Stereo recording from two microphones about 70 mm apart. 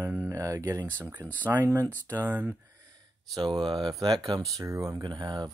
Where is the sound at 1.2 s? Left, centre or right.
Right.